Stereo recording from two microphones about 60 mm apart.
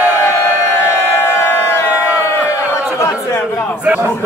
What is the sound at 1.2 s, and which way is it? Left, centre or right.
Crowd, left.